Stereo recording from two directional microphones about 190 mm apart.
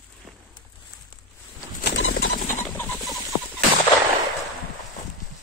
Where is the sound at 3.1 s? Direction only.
15° right (ahead or behind).